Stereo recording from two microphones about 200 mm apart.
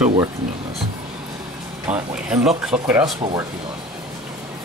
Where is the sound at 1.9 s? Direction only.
5° right (ahead or behind).